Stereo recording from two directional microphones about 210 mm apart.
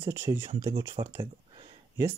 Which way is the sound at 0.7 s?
25° right (ahead or behind).